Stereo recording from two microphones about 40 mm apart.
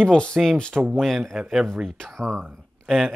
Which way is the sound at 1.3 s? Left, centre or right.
Centre.